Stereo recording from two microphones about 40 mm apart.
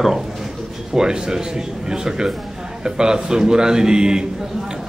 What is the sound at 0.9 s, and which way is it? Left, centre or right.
A man's voice, centre.